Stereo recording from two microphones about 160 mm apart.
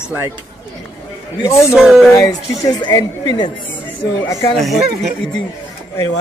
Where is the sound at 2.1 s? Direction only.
20° left (ahead or behind).